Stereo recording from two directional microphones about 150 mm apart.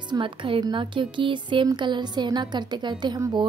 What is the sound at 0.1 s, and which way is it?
A woman's voice, 35° right (ahead or behind).